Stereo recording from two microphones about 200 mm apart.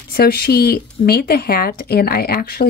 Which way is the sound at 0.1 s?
50° left (ahead or behind).